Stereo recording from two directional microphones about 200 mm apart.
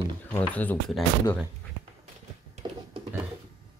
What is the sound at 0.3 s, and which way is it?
Speech, 10° left (ahead or behind).